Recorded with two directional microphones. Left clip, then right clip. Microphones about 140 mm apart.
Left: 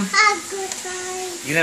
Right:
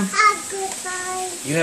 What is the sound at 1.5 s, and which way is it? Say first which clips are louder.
Speech: left 2 dB; 15° right (ahead or behind).